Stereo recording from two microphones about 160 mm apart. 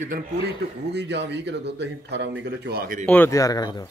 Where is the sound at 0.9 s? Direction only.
90° right; by 3.0 s 70° right (ahead or behind).